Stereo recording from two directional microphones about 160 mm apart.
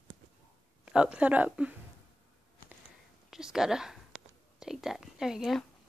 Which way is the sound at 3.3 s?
5° right (ahead or behind).